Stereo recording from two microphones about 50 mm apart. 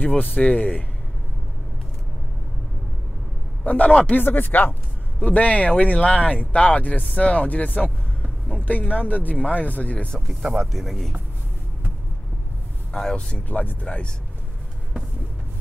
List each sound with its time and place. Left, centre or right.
0.0 s speech: left
3.6 s speech: left
4.1 s speech: left
5.2 s speech: left
10.4 s speech: centre
10.7 s speech: centre
12.9 s speech: centre